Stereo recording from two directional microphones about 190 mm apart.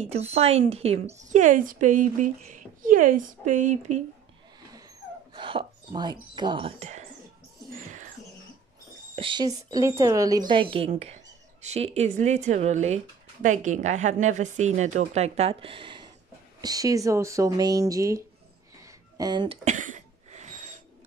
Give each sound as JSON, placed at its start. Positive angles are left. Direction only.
{"t": 0.0, "sound": "speech", "side_deg": -35}
{"t": 5.3, "sound": "speech", "side_deg": -25}
{"t": 9.1, "sound": "a woman's voice", "side_deg": -25}
{"t": 18.8, "sound": "a sound", "side_deg": -20}
{"t": 19.6, "sound": "cough", "side_deg": -40}